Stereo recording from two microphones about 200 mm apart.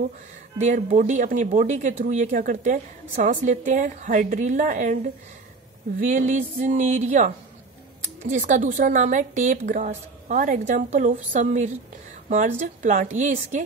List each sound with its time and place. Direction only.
0.6 s speech: 35° right (ahead or behind)
5.9 s speech: 40° right (ahead or behind)